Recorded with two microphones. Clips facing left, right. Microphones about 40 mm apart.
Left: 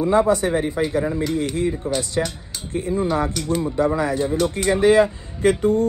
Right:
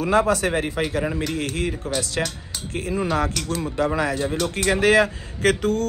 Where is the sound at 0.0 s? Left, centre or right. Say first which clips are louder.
Left 2 dB; right.